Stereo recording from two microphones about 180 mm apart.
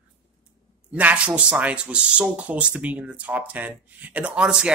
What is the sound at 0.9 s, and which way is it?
Speech, 5° right (ahead or behind).